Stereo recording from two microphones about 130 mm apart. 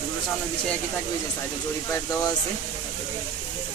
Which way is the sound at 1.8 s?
25° left (ahead or behind).